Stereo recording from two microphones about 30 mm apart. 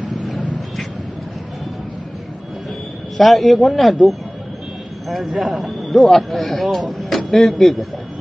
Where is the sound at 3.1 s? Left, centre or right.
Centre.